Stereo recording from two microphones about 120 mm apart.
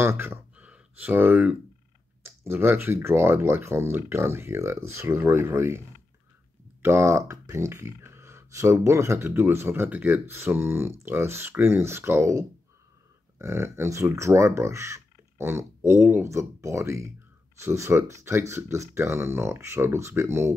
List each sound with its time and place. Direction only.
0.0 s speech: 20° right (ahead or behind)
6.8 s speech: 20° right (ahead or behind)